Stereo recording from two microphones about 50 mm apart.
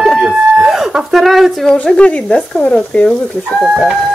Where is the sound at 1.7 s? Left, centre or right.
Left.